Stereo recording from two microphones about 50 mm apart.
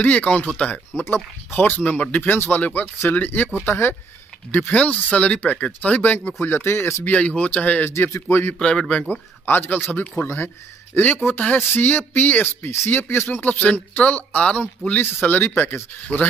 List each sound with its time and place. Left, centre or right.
0.0 s speech: left
1.0 s speech: left
3.6 s speech: left
4.5 s speech: left
7.1 s speech: left
7.9 s speech: left
8.5 s speech: centre
9.5 s speech: left
10.1 s speech: left
11.2 s speech: left
11.7 s speech: left
13.5 s speech: left
15.2 s speech: left